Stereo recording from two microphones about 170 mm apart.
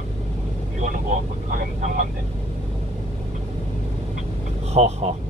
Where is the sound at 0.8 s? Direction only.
45° right (ahead or behind).